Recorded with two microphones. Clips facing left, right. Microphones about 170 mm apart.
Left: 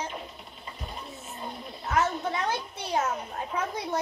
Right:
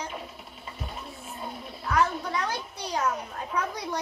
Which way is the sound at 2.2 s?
25° left (ahead or behind).